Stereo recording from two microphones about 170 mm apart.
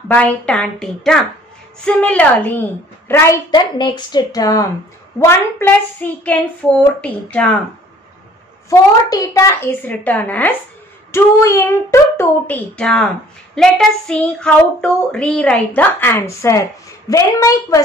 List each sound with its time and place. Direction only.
0.1 s a woman's voice: 5° left (ahead or behind)
3.5 s a woman's voice: 25° left (ahead or behind); by 7.5 s 5° left (ahead or behind)
8.6 s a woman's voice: 20° left (ahead or behind)